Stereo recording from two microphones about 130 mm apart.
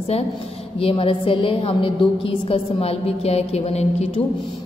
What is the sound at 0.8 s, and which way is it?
A woman's voice, 45° left (ahead or behind).